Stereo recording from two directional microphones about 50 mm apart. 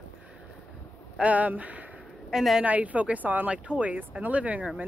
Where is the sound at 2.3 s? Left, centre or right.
Centre.